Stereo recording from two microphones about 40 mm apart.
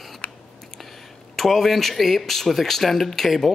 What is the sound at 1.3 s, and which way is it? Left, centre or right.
Speech, centre.